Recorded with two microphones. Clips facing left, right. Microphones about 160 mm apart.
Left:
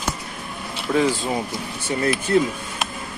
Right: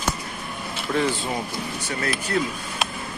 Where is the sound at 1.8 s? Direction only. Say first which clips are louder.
Left 8 dB; 25° left (ahead or behind).